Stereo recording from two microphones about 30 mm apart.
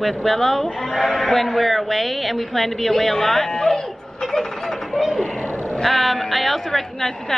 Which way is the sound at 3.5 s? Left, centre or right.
Left.